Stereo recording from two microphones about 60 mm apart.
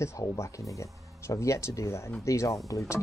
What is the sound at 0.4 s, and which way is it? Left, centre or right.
Speech, left.